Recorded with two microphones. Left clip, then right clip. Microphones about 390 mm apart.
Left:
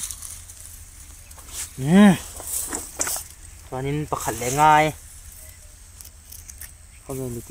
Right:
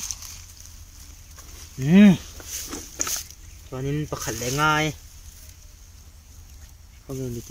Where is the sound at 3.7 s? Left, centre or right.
Centre.